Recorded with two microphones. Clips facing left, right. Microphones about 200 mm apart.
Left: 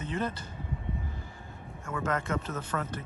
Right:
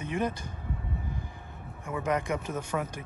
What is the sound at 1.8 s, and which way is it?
Speech, 15° right (ahead or behind).